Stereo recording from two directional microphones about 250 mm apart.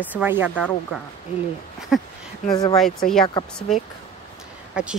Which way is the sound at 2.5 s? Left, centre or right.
Centre.